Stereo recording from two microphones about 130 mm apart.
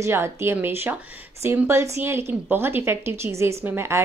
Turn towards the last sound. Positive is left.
turn(degrees=-20)  # may be behind; listen again after turning